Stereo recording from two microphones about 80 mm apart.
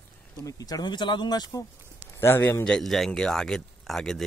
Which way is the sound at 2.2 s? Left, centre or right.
Left.